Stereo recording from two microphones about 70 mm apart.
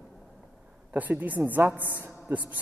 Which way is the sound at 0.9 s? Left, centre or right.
Right.